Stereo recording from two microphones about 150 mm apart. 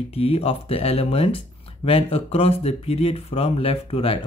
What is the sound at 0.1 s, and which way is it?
Speech, 40° left (ahead or behind).